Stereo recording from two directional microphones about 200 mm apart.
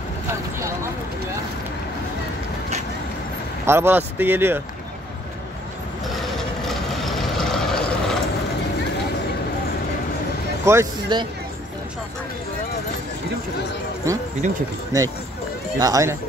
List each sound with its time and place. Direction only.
3.6 s speech: 10° right (ahead or behind)
6.0 s vehicle: centre (ahead or behind)
10.6 s speech: 15° right (ahead or behind)
14.4 s speech: 40° right (ahead or behind)
15.8 s speech: 15° right (ahead or behind)